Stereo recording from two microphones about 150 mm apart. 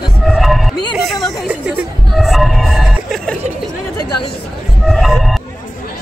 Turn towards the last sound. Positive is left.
turn(degrees=0)  # may be behind; listen again after turning